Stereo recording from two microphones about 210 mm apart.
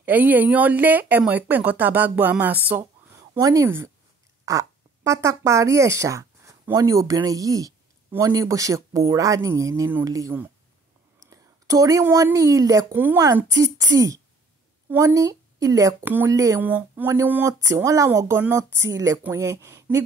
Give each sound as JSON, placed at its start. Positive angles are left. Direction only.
{"t": 0.0, "sound": "speech", "side_deg": -10}